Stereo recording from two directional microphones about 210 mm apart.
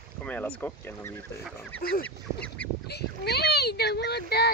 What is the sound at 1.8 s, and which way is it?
Speech, 45° left (ahead or behind).